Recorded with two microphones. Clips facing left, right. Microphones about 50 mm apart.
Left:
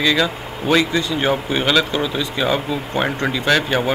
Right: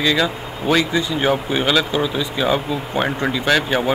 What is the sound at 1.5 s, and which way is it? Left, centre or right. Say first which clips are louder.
Speech: even; centre.